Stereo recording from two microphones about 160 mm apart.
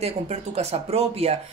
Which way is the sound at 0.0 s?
40° right (ahead or behind).